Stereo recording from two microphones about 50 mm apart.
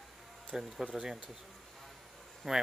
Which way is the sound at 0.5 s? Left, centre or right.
Centre.